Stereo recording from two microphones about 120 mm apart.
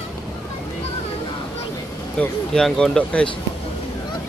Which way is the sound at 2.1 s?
5° left (ahead or behind).